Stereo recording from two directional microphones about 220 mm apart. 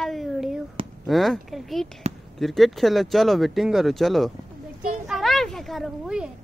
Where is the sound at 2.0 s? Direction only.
30° right (ahead or behind).